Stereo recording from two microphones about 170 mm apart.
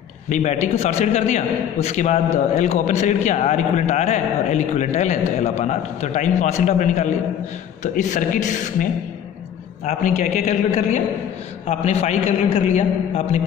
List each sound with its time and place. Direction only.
0.3 s a man's voice: 45° left (ahead or behind)
9.8 s a man's voice: 45° left (ahead or behind)